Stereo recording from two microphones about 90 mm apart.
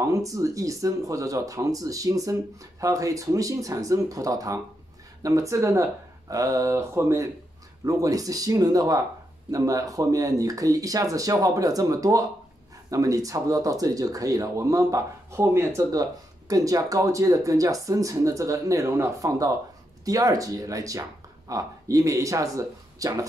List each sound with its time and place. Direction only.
0.0 s speech: 40° right (ahead or behind)